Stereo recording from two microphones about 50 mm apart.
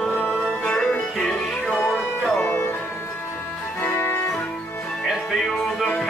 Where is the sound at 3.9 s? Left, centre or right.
Left.